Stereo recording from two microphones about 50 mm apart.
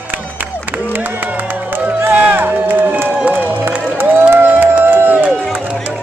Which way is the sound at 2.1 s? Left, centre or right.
Right.